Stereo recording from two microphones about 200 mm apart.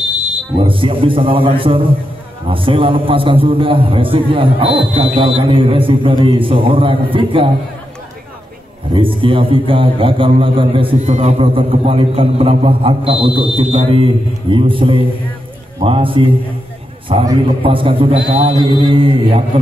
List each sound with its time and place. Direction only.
0.7 s a man's voice: 25° right (ahead or behind)
8.9 s a man's voice: 25° right (ahead or behind)